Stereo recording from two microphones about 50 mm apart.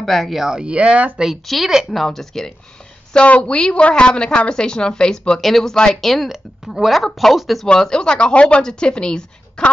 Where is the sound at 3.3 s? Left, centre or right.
Left; by 6.3 s centre.